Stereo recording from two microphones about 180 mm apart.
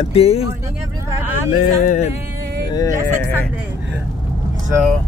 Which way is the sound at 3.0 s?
10° left (ahead or behind).